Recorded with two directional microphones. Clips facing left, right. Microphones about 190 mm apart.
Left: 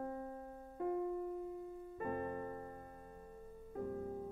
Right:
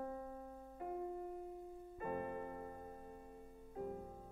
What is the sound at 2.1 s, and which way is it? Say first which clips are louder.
Music: left 1 dB; 40° left (ahead or behind).